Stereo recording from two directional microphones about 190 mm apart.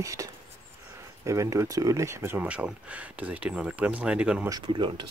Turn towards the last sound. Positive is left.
turn(degrees=-25)  # may be behind; listen again after turning